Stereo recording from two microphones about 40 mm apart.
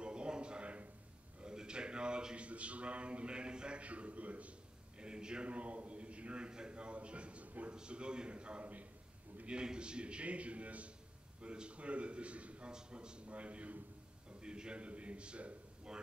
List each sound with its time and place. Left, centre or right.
0.0 s a sound: right
3.8 s a man's voice: right
4.9 s a man's voice: right
7.7 s a man's voice: right
14.4 s a man's voice: right